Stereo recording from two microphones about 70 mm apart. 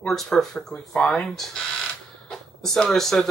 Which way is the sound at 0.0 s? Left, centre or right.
Centre.